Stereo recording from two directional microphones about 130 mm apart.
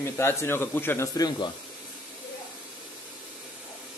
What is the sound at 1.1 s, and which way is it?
Speech, 30° left (ahead or behind).